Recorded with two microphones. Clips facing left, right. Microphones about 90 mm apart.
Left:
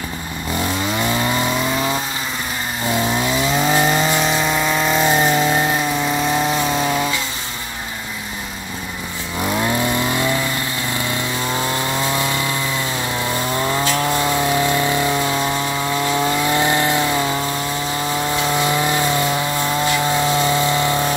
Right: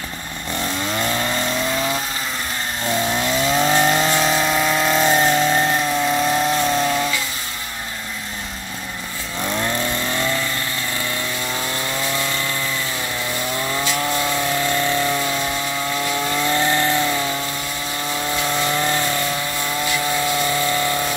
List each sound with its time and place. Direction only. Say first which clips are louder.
0.9 s chainsaw: left 2 dB; 10° left (ahead or behind)
9.4 s vehicle: left 3 dB; 10° left (ahead or behind)
12.2 s chainsaw: left 3 dB; 15° left (ahead or behind)
14.1 s chainsaw: left 3 dB; 20° left (ahead or behind)
16.3 s chainsaw: left 2 dB; 15° left (ahead or behind)
18.5 s chainsaw: left 2 dB; 15° left (ahead or behind)